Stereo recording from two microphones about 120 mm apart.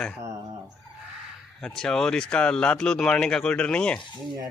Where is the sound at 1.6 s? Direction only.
5° left (ahead or behind).